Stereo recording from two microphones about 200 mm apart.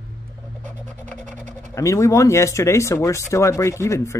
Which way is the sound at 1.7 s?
15° left (ahead or behind).